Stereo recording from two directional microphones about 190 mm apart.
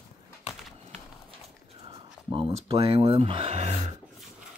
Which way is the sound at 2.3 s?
30° right (ahead or behind).